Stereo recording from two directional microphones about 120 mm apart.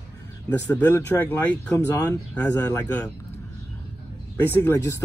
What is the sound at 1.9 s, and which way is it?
Speech, 25° left (ahead or behind).